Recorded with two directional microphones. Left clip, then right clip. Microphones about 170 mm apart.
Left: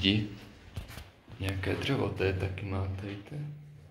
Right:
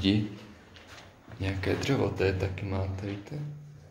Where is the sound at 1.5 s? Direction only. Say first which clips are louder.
Right 3 dB; 15° right (ahead or behind).